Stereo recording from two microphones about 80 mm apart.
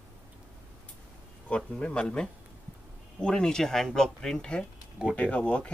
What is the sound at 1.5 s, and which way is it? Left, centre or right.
Speech, centre.